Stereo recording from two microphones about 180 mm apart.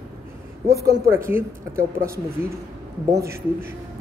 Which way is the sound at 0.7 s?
15° right (ahead or behind).